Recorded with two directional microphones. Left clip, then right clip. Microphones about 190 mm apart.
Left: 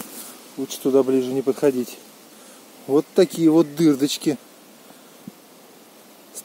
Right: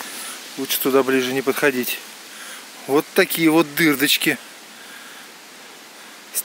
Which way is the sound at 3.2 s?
10° left (ahead or behind).